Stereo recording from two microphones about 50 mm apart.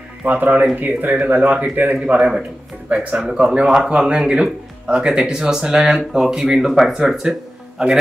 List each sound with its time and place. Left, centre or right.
0.3 s speech: right
3.5 s speech: centre